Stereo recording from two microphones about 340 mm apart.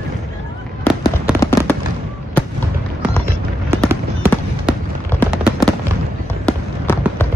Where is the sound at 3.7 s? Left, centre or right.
Centre.